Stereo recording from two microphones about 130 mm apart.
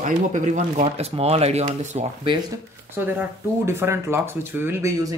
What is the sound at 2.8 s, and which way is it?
Speech, 15° right (ahead or behind).